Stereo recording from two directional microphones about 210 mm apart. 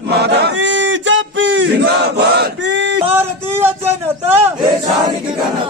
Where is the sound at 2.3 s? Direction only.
60° right (ahead or behind).